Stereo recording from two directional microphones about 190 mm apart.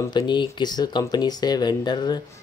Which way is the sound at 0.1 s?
25° left (ahead or behind).